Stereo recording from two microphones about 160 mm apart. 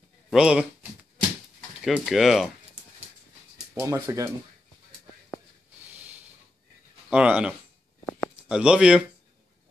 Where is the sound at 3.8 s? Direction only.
20° right (ahead or behind).